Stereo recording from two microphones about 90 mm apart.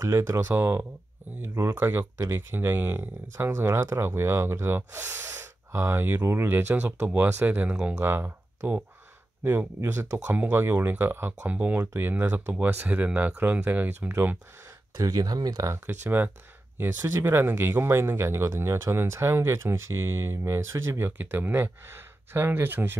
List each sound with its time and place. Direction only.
0.0 s speech: 35° right (ahead or behind)
10.2 s speech: 20° right (ahead or behind)
15.0 s speech: 45° right (ahead or behind); by 22.9 s 25° right (ahead or behind)